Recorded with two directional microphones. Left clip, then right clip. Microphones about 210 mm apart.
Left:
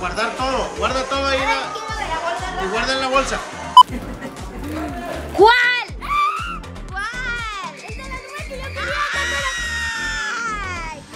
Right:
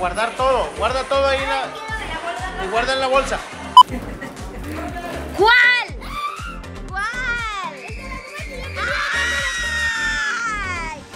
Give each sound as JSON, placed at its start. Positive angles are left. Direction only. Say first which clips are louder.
{"t": 0.0, "sound": "speech", "louder": "right 2 dB", "side_deg": 0}
{"t": 2.7, "sound": "speech", "louder": "right 2 dB", "side_deg": 0}
{"t": 5.4, "sound": "a child's voice", "louder": "even", "side_deg": 20}
{"t": 6.0, "sound": "music", "louder": "left 8 dB", "side_deg": 5}
{"t": 8.7, "sound": "music", "louder": "right 1 dB", "side_deg": 0}